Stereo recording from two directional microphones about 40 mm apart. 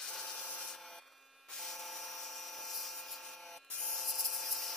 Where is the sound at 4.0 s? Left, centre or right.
Centre.